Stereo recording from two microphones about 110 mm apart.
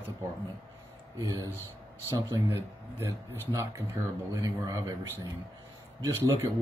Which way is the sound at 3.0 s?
30° right (ahead or behind).